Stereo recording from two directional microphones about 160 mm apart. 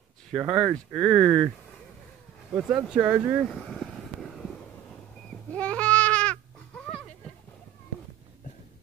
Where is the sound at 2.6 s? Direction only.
Centre (ahead or behind).